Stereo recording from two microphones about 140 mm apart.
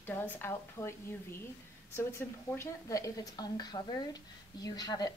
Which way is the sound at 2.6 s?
20° left (ahead or behind).